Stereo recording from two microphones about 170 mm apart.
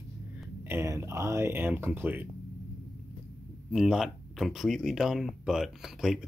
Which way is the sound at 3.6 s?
Centre (ahead or behind).